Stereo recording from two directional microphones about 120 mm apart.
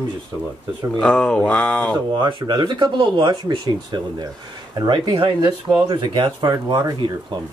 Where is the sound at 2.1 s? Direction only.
35° right (ahead or behind).